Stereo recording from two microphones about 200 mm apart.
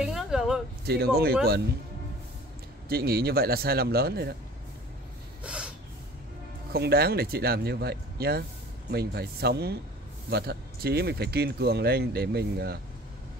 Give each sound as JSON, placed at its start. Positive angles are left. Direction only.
{"t": 0.0, "sound": "a sound", "side_deg": 0}
{"t": 0.8, "sound": "speech", "side_deg": -50}
{"t": 2.9, "sound": "speech", "side_deg": -50}
{"t": 5.4, "sound": "snort", "side_deg": -5}
{"t": 6.7, "sound": "speech", "side_deg": -50}